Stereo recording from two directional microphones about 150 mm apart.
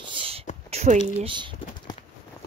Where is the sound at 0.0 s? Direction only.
35° right (ahead or behind).